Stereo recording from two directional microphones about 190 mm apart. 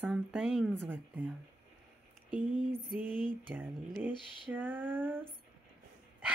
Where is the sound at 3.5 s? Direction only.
10° right (ahead or behind).